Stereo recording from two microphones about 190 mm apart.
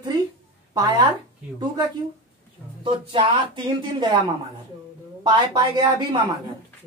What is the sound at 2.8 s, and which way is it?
Speech, 25° right (ahead or behind).